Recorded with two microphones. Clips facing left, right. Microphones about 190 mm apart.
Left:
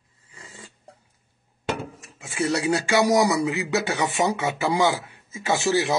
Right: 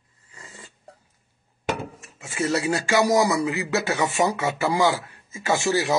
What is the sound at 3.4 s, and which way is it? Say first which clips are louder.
Speech: even; 20° left (ahead or behind).